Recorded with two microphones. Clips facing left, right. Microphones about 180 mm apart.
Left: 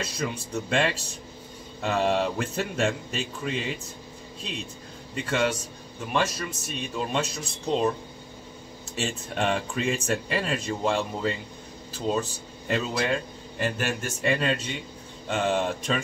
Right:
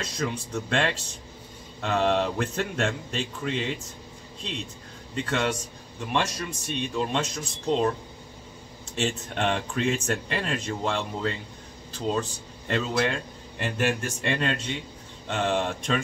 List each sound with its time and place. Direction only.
0.0 s a man's voice: 5° left (ahead or behind)
5.1 s a man's voice: 5° left (ahead or behind)
8.9 s a man's voice: 5° left (ahead or behind)